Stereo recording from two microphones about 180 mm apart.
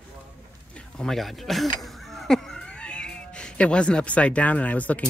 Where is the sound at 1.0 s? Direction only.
Centre (ahead or behind).